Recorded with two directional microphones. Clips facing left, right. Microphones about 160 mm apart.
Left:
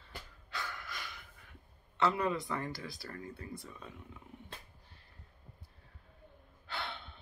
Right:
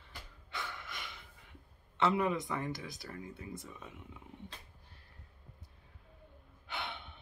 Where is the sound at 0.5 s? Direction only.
25° right (ahead or behind).